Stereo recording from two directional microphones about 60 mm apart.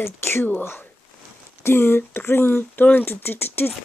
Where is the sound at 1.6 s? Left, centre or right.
Left.